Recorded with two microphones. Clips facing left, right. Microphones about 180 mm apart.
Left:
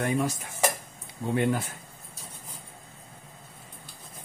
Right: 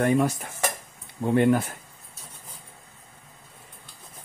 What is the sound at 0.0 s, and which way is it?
Speech, 55° right (ahead or behind).